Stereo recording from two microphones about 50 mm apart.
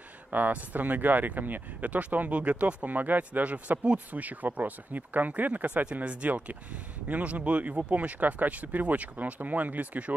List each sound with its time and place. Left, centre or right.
0.3 s speech: right